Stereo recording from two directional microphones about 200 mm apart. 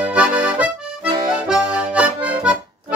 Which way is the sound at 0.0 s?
5° right (ahead or behind).